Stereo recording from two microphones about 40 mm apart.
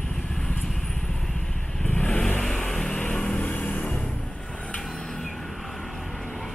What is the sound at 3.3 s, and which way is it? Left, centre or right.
Music, left.